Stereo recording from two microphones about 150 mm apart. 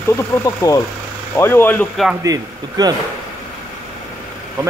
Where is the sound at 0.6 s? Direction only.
25° left (ahead or behind).